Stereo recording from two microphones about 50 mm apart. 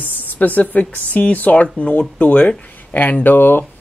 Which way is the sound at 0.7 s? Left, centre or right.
Left.